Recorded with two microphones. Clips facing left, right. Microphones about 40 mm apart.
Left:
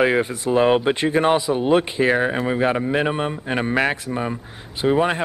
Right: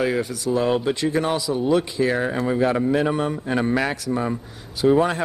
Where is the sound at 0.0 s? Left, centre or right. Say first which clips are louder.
Left 4 dB; left.